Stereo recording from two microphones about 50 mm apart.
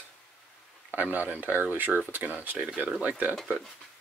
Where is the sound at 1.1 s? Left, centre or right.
Right.